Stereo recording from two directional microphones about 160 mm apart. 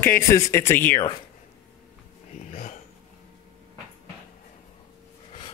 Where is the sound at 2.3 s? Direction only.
50° left (ahead or behind).